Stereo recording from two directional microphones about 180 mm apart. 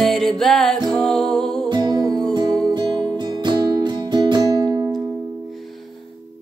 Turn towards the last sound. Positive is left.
turn(degrees=-20)  # may be behind; listen again after turning